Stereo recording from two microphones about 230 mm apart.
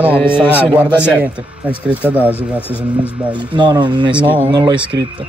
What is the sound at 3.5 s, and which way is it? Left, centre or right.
Speech, centre.